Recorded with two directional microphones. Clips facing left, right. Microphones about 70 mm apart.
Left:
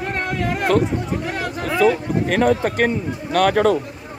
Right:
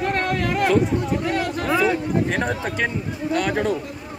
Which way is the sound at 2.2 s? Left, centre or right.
Left.